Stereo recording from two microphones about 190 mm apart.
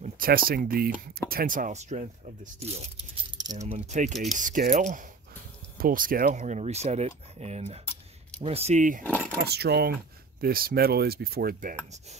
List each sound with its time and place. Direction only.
0.0 s a sound: 50° right (ahead or behind)
0.5 s speech: 50° right (ahead or behind); by 2.9 s 35° right (ahead or behind)
3.3 s keys jangling: 20° right (ahead or behind)
3.6 s speech: 40° right (ahead or behind)
4.1 s speech: centre (ahead or behind)
4.4 s speech: 45° right (ahead or behind)
9.4 s speech: 60° right (ahead or behind)